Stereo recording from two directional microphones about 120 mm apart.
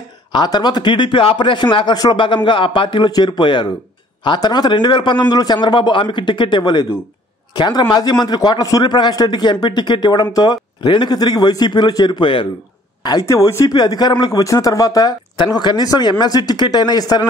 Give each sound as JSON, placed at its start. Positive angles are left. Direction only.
{"t": 0.3, "sound": "speech", "side_deg": 35}
{"t": 13.0, "sound": "speech", "side_deg": 30}